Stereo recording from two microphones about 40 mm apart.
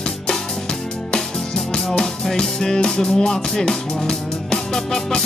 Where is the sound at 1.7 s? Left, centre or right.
Centre.